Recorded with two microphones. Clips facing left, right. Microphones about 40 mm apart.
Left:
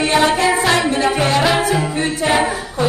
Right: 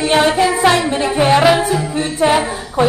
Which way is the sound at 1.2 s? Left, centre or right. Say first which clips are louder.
Right 8 dB; centre.